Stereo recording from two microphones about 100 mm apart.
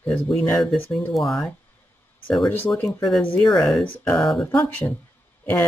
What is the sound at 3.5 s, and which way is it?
Speech, 5° left (ahead or behind).